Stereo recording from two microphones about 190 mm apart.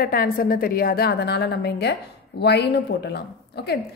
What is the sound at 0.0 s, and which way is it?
A woman's voice, 50° left (ahead or behind).